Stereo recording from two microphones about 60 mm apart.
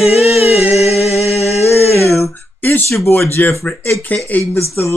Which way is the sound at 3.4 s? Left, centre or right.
Left.